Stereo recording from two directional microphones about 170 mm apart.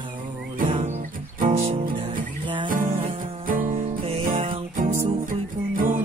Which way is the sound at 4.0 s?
35° right (ahead or behind).